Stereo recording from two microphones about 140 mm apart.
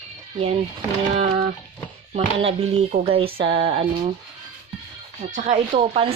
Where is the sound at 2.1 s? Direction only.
50° right (ahead or behind).